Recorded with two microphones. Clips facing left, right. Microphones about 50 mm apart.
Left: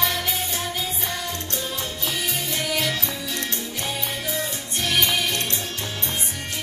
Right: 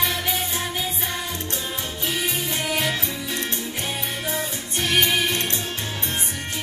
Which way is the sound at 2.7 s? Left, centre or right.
Right.